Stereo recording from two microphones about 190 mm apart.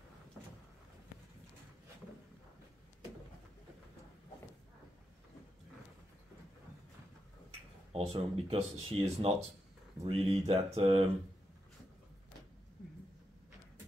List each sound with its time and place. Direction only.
7.9 s speech: 30° right (ahead or behind)